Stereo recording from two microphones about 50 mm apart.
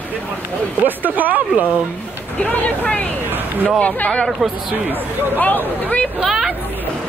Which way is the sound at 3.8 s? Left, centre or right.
Left.